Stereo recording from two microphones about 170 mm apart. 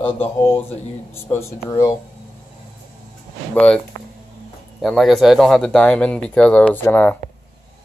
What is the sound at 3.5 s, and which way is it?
Speech, 5° left (ahead or behind).